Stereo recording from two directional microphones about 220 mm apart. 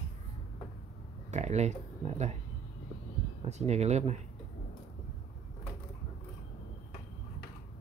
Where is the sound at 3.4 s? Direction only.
30° right (ahead or behind).